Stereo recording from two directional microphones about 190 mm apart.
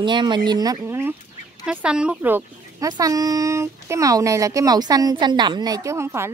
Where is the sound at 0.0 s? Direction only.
25° right (ahead or behind).